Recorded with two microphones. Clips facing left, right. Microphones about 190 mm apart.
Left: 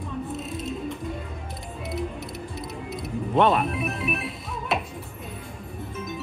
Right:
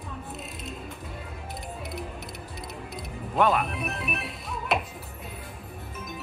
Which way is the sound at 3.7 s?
Centre (ahead or behind).